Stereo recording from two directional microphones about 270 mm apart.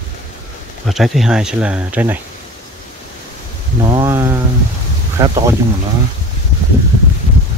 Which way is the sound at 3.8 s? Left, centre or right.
Centre.